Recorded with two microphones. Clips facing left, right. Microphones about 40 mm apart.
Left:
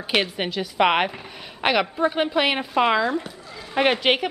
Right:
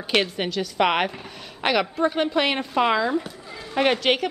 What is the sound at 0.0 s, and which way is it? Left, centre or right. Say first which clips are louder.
A woman's voice: even; centre.